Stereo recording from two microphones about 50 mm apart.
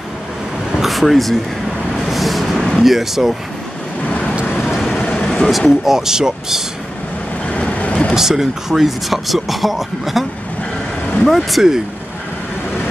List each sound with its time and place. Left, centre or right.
0.7 s a sound: centre
2.0 s vehicle: centre
4.1 s vehicle: centre
4.6 s vehicle: centre
4.8 s vehicle: centre
5.7 s speech: centre
7.4 s boat: left
8.1 s speech: centre
11.2 s speech: centre